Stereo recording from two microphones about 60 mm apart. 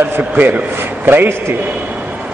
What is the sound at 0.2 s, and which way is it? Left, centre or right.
A man's voice, right.